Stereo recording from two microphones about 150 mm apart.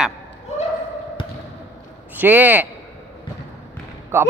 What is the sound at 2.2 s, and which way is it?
Speech, 10° right (ahead or behind).